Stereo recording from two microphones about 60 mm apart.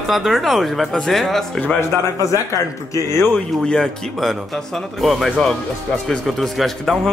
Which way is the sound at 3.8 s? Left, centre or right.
Centre.